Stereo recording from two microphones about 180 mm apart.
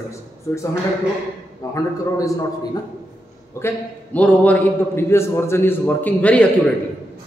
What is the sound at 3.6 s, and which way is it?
A man's voice, 10° left (ahead or behind).